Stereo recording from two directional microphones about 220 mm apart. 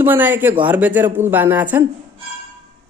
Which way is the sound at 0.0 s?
10° right (ahead or behind).